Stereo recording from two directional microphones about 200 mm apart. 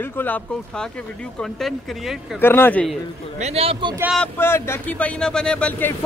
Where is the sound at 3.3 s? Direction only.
30° right (ahead or behind).